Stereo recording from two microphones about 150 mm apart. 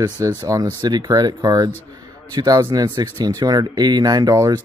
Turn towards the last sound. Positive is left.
turn(degrees=-25)  # may be behind; listen again after turning